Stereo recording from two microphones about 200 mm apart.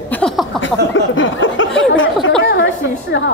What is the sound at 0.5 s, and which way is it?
Speech, 70° left (ahead or behind).